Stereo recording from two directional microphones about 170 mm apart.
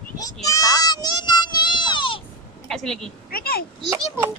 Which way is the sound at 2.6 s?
Centre (ahead or behind).